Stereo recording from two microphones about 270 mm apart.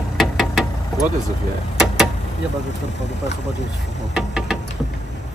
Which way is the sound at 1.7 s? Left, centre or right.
Centre.